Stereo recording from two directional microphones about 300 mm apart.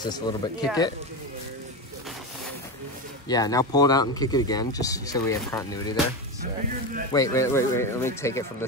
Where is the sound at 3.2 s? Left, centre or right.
Centre.